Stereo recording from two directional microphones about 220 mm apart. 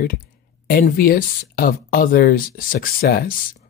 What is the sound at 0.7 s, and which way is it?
A woman's voice, 40° left (ahead or behind).